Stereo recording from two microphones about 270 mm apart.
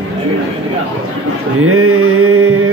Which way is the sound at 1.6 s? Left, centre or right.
Right.